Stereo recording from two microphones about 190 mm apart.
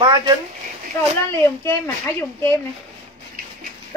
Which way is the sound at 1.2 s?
15° left (ahead or behind).